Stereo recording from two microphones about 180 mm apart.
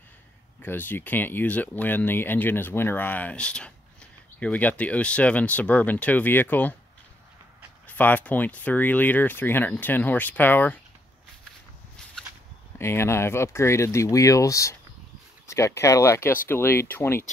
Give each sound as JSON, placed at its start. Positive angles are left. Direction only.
{"t": 0.6, "sound": "speech", "side_deg": 10}
{"t": 7.8, "sound": "speech", "side_deg": 10}
{"t": 12.7, "sound": "speech", "side_deg": 15}